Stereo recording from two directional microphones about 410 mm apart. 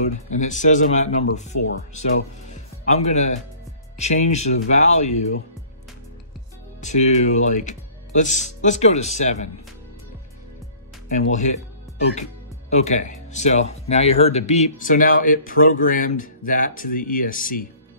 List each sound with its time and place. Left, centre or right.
0.0 s speech: centre
6.8 s speech: centre
12.2 s speech: centre